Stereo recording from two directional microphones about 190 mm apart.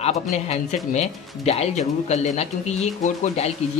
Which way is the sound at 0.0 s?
35° left (ahead or behind).